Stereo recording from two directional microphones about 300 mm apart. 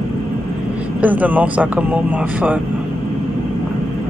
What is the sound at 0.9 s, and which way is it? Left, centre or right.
A woman's voice, centre.